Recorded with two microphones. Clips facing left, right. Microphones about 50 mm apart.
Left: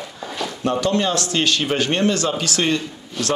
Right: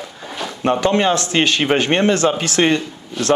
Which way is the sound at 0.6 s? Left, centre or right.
Right.